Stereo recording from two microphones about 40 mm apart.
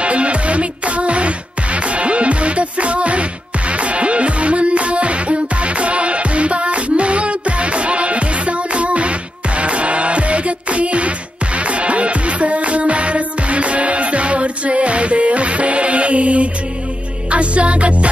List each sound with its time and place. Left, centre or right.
0.0 s music: right